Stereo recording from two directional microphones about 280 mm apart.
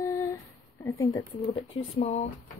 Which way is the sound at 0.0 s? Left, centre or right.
Centre.